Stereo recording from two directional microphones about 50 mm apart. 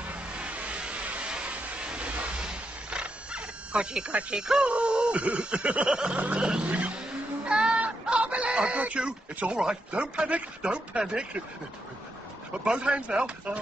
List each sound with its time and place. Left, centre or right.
0.1 s a sound: right
6.1 s speech: right
6.4 s music: centre
7.4 s chicken: right
9.6 s speech: centre
12.6 s speech: right